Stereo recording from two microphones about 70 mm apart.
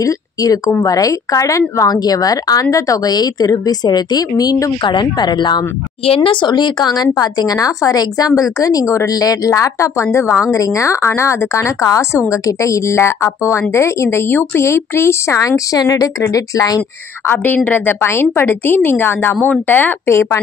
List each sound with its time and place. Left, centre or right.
0.0 s a woman's voice: left
2.0 s a woman's voice: left
4.9 s a woman's voice: left
17.3 s a woman's voice: left
20.1 s a woman's voice: left